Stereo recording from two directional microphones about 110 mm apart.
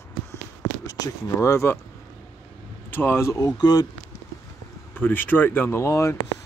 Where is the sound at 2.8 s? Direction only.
20° left (ahead or behind); by 3.9 s 35° left (ahead or behind).